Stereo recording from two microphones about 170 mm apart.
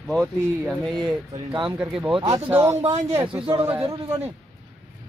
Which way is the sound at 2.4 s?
15° right (ahead or behind).